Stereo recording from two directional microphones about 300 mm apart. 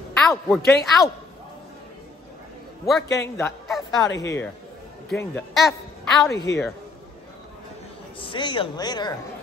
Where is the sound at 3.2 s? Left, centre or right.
Centre.